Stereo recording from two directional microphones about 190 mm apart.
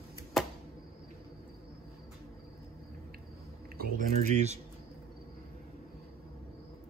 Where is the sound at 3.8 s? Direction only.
40° right (ahead or behind).